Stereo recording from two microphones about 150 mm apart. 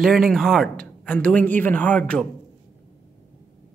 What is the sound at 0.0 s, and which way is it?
Speech, centre (ahead or behind).